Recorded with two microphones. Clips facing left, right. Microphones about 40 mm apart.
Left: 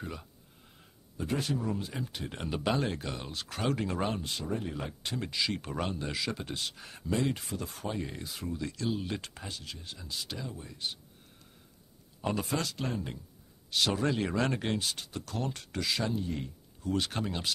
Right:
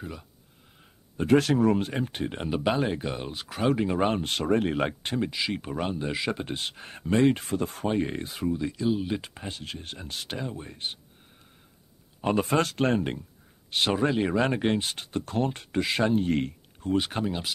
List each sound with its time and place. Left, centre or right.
0.0 s speech: centre
1.1 s speech: right
2.2 s speech: right
4.1 s speech: right
5.2 s speech: centre
9.5 s speech: right
12.2 s speech: right
13.7 s speech: right
16.3 s speech: right
16.9 s speech: right
17.2 s speech: centre